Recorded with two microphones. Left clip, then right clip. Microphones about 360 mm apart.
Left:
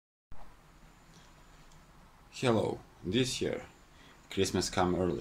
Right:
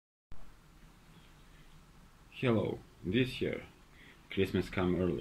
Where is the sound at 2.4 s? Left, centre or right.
Left.